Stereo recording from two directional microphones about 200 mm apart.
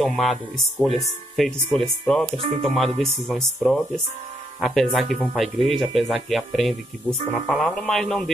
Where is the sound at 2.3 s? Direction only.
30° right (ahead or behind).